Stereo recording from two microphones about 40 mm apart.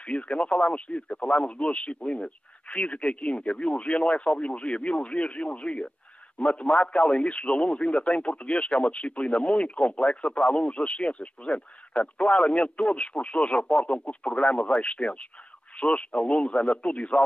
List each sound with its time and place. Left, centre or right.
0.0 s speech: left